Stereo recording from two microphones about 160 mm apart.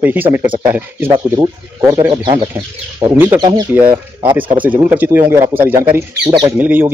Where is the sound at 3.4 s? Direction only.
25° right (ahead or behind).